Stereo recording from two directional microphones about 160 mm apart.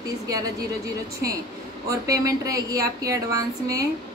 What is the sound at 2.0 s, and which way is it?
A woman's voice, 20° right (ahead or behind).